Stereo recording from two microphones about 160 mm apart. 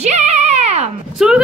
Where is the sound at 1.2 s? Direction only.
Centre (ahead or behind).